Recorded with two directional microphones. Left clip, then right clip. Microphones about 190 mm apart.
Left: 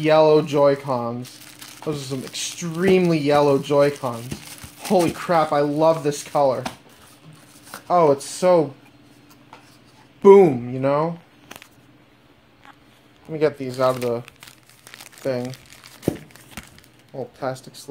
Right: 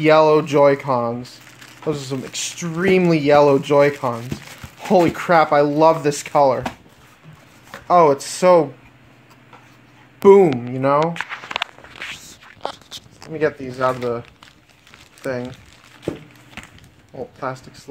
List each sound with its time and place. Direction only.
0.0 s speech: 10° right (ahead or behind)
7.9 s speech: 15° right (ahead or behind)
10.2 s speech: 5° right (ahead or behind)
13.3 s speech: 10° left (ahead or behind)
17.4 s speech: 10° left (ahead or behind)